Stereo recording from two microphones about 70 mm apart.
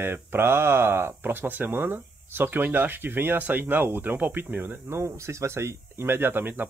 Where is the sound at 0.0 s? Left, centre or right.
Right.